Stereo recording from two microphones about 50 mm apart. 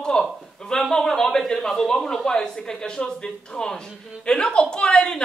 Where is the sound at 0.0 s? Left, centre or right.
Centre.